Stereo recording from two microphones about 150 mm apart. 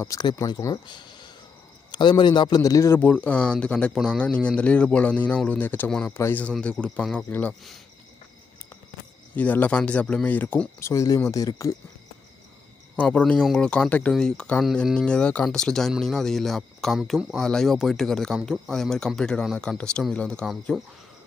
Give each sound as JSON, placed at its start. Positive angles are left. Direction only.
{"t": 0.0, "sound": "a man's voice", "side_deg": 25}
{"t": 9.3, "sound": "a man's voice", "side_deg": 10}
{"t": 12.9, "sound": "speech", "side_deg": 10}